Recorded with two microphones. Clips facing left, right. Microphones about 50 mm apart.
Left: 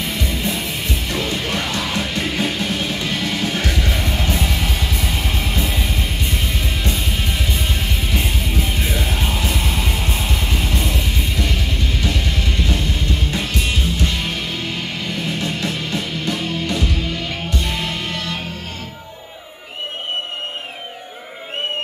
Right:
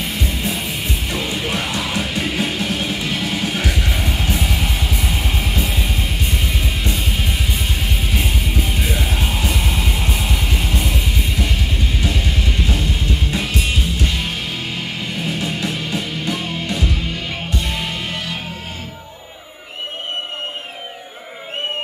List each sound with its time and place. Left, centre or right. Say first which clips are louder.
0.0 s music: even; centre
5.9 s music: even; centre
15.2 s music: right 1 dB; centre